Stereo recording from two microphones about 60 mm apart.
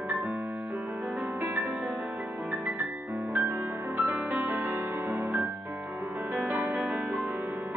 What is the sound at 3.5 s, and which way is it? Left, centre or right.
Music, right.